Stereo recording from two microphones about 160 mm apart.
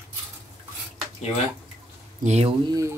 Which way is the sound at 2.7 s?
20° right (ahead or behind).